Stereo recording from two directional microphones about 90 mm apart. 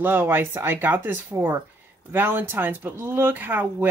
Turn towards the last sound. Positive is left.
turn(degrees=-20)  # may be behind; listen again after turning